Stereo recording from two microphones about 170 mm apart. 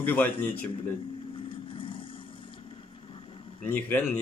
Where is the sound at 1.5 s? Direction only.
30° left (ahead or behind).